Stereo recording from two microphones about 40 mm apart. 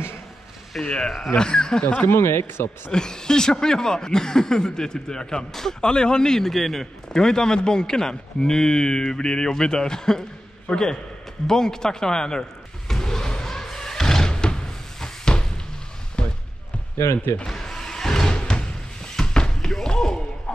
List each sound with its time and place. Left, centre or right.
0.7 s speech: centre
2.0 s speech: left
2.9 s a man's voice: centre
5.8 s a man's voice: left
13.0 s slam: centre
16.2 s basketball bounce: left
17.5 s music: centre
18.3 s a sound: left
20.5 s music: left